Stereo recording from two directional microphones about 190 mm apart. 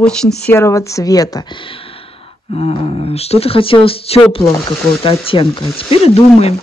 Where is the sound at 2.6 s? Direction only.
30° left (ahead or behind).